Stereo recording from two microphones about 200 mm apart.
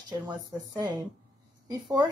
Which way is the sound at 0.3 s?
20° right (ahead or behind).